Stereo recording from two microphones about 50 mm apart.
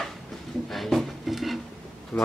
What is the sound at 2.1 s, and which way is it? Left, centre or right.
Speech, left.